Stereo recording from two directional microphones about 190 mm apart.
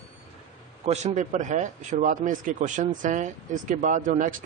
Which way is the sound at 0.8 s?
35° right (ahead or behind).